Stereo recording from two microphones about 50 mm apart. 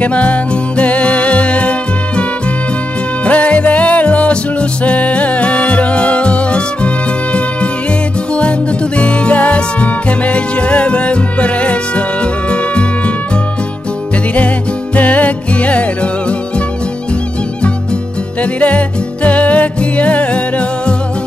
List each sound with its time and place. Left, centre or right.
0.0 s music: left
3.3 s music: left
8.4 s music: left
15.0 s music: left
18.4 s music: left